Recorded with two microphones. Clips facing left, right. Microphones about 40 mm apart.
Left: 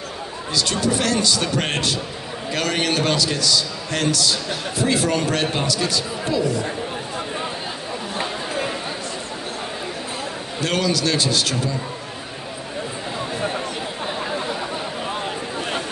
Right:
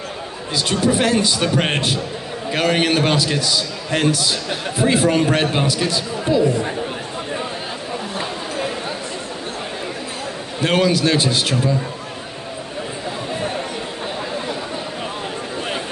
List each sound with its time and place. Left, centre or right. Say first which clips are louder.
0.6 s a man's voice: right 3 dB; right
10.6 s a man's voice: right 5 dB; right